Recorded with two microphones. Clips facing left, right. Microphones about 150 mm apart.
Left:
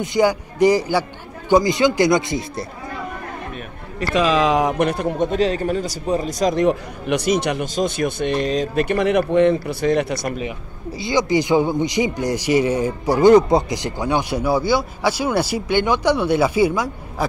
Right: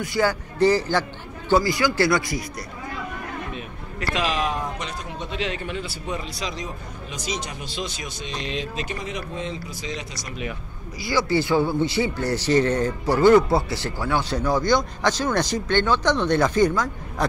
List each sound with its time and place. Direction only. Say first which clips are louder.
0.0 s a man's voice: left 5 dB; 20° left (ahead or behind)
4.4 s speech: left 10 dB; 90° left; by 6.6 s 45° left (ahead or behind)
6.6 s speech: left 16 dB; 65° left (ahead or behind)
7.6 s speech: left 11 dB; 50° left (ahead or behind)
8.5 s speech: left 10 dB; 45° left (ahead or behind)
8.8 s speech: left 14 dB; 65° left (ahead or behind)
11.0 s a man's voice: left 4 dB; 20° left (ahead or behind)